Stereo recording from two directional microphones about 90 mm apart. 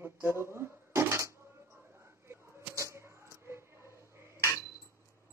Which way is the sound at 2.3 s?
30° right (ahead or behind).